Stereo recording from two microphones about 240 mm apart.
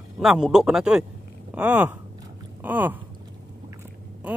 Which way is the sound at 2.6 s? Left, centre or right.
Centre.